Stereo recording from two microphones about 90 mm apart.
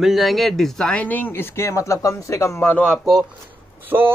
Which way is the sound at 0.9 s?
15° left (ahead or behind).